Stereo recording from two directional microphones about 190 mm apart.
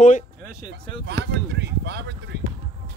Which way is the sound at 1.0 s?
65° right (ahead or behind).